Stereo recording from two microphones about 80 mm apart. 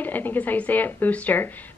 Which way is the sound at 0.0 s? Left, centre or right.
Left.